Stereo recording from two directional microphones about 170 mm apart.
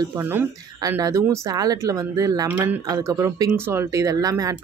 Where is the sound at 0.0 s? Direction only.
15° right (ahead or behind).